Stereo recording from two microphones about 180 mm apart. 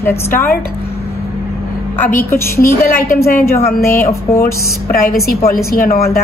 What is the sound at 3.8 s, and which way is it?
Speech, 15° left (ahead or behind).